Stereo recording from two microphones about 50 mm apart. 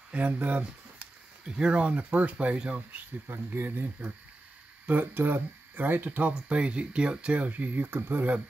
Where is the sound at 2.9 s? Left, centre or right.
Right.